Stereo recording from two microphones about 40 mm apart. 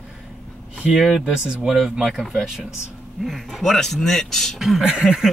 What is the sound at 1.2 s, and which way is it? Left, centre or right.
A man's voice, centre.